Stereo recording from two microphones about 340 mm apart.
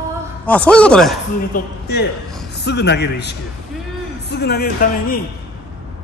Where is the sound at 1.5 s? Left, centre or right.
Left.